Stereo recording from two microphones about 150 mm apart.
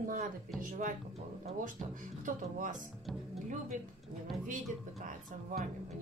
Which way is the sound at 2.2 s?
60° right (ahead or behind).